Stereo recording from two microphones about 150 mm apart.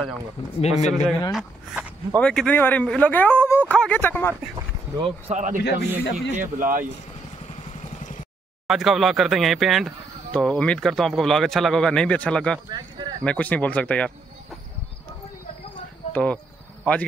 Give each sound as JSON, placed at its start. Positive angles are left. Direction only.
{"t": 0.6, "sound": "speech", "side_deg": 45}
{"t": 2.1, "sound": "speech", "side_deg": 5}
{"t": 5.3, "sound": "speech", "side_deg": -55}
{"t": 5.6, "sound": "a man's voice", "side_deg": 90}
{"t": 6.3, "sound": "speech", "side_deg": -60}
{"t": 8.6, "sound": "speech", "side_deg": 0}
{"t": 12.6, "sound": "speech", "side_deg": -30}
{"t": 13.2, "sound": "speech", "side_deg": 10}
{"t": 16.1, "sound": "speech", "side_deg": 10}